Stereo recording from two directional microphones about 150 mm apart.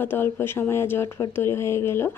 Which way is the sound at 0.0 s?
15° left (ahead or behind).